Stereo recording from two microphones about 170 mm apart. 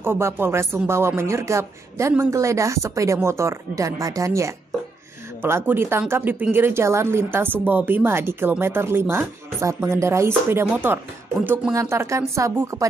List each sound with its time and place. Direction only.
0.0 s speech: 15° right (ahead or behind)